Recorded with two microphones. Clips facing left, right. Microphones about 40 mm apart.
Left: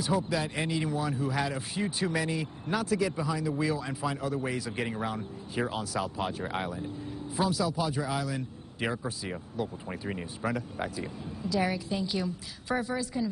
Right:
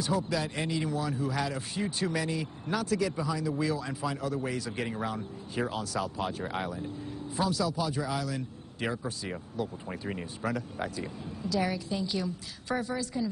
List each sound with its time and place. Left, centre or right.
0.0 s speech: centre